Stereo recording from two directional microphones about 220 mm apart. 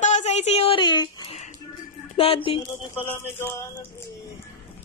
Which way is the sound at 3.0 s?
10° left (ahead or behind).